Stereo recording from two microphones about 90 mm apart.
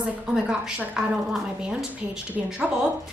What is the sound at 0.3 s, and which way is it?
A woman's voice, 5° right (ahead or behind).